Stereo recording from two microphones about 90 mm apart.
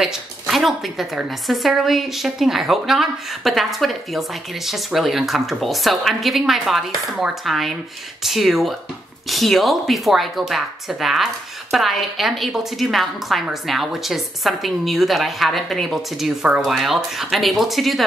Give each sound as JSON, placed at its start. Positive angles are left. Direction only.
{"t": 0.0, "sound": "speech", "side_deg": -5}